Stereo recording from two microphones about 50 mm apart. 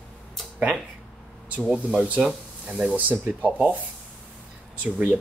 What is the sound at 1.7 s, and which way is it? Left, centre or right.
Speech, centre.